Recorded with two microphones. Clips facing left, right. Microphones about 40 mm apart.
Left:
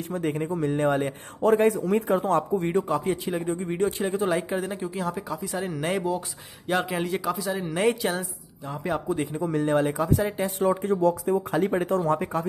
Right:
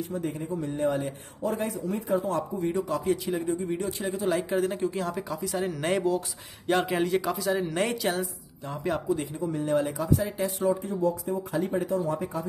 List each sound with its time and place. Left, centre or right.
0.0 s speech: left
4.4 s speech: centre
9.1 s speech: left
9.4 s speech: left
9.7 s speech: left